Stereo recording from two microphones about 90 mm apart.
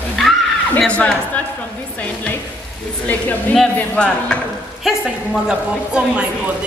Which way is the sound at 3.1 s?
20° left (ahead or behind).